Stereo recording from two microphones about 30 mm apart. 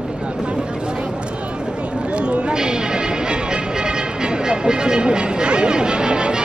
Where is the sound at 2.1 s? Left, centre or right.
Right.